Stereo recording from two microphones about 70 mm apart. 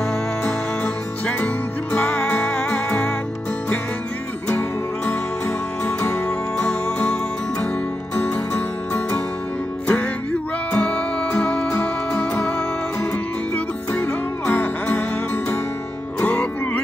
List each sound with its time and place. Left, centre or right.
0.5 s music: centre
4.5 s music: centre
8.2 s music: centre
13.9 s music: left
16.2 s music: centre